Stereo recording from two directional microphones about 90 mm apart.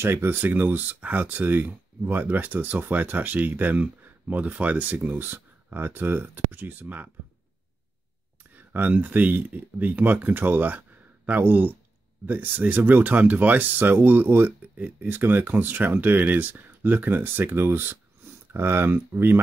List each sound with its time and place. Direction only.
0.0 s speech: 25° right (ahead or behind)
8.5 s speech: 20° right (ahead or behind)